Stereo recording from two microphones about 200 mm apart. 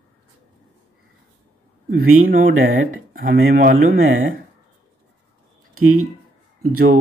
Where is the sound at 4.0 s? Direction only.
80° right.